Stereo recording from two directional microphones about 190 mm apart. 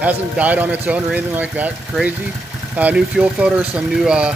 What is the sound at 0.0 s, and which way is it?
Speech, 10° right (ahead or behind).